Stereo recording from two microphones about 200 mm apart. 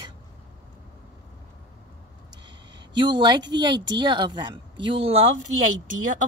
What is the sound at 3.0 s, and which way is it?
A woman's voice, 25° right (ahead or behind).